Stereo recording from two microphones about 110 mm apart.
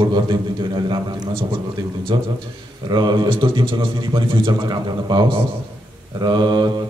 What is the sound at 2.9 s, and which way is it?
A man's voice, 40° right (ahead or behind).